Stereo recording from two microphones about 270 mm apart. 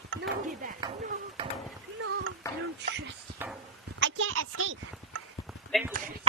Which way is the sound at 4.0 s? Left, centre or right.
Right.